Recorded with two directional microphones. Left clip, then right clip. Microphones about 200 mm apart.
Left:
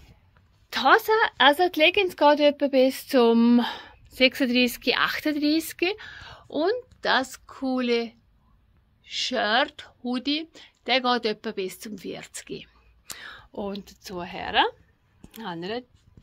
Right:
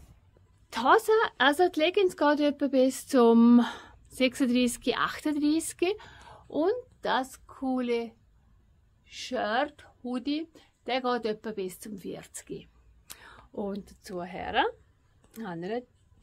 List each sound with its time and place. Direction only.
0.7 s speech: 5° right (ahead or behind); by 13.3 s 25° left (ahead or behind)
13.5 s speech: centre (ahead or behind)